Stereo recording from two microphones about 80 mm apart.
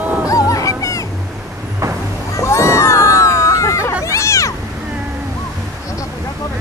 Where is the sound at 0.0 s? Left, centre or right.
Centre.